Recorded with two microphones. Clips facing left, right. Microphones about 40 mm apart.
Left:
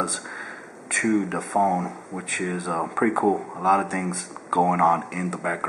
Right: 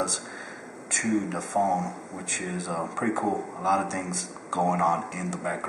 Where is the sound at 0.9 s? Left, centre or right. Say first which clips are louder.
Left 4 dB; left.